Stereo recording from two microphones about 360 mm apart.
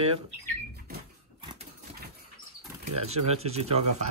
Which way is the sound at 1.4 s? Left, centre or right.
Centre.